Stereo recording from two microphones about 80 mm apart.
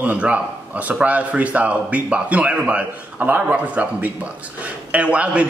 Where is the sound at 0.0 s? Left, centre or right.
Centre.